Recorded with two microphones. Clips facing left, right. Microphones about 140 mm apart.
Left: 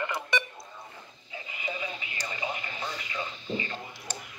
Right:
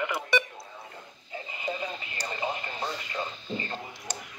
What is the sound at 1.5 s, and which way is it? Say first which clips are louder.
Radio: right 2 dB; 35° right (ahead or behind).